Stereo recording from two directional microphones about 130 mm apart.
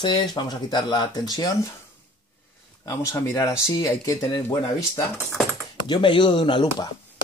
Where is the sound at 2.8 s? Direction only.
25° left (ahead or behind).